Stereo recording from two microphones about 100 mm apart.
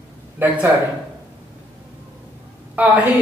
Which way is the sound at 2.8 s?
15° right (ahead or behind).